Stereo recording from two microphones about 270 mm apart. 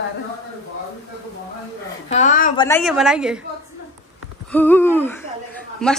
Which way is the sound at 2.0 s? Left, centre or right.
Left.